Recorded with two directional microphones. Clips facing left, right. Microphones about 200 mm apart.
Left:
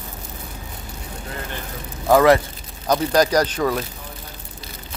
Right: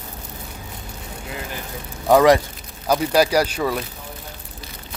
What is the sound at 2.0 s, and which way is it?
Speech, 15° right (ahead or behind).